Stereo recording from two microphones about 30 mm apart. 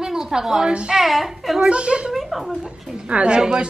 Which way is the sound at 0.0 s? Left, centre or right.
Right.